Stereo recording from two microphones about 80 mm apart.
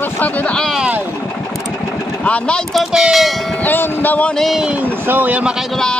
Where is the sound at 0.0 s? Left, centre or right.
Left.